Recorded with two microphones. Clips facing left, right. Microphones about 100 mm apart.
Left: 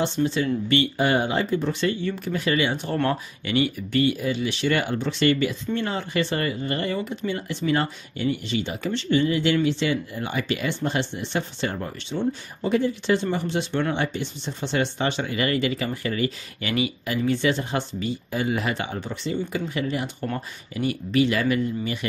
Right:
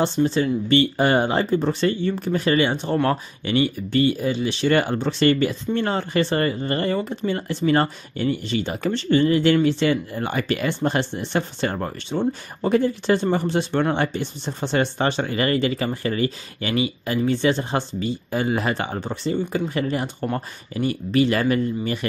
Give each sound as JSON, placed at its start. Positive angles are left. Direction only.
{"t": 0.0, "sound": "speech", "side_deg": -35}